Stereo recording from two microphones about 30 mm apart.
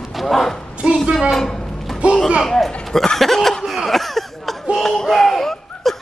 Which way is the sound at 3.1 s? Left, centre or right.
Centre.